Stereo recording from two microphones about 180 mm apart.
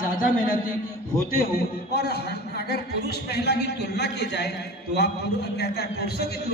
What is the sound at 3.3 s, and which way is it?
A man's voice, 70° left (ahead or behind).